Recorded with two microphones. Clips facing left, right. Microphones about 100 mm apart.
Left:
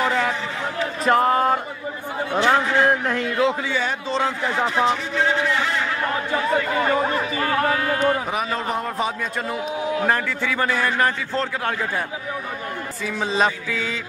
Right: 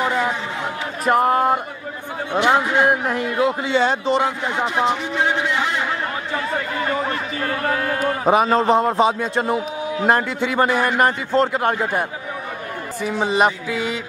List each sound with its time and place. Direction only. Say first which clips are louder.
0.0 s a sound: right 1 dB; 15° right (ahead or behind)
1.0 s a man's voice: right 1 dB; 5° right (ahead or behind)
2.3 s a man's voice: right 2 dB; 20° right (ahead or behind)
8.3 s a man's voice: right 9 dB; 30° right (ahead or behind)
13.4 s a man's voice: right 2 dB; 15° right (ahead or behind)